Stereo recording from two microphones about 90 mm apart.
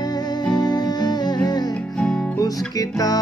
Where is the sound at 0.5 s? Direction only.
50° left (ahead or behind).